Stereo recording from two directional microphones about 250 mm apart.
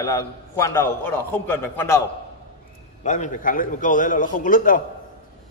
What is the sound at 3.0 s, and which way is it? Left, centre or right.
A man's voice, left.